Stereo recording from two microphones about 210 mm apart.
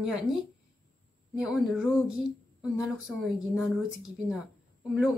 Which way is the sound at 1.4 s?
5° right (ahead or behind).